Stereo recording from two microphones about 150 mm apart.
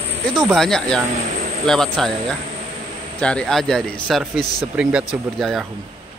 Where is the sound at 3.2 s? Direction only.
5° left (ahead or behind).